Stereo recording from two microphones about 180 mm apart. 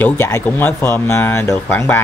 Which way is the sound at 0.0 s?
10° left (ahead or behind).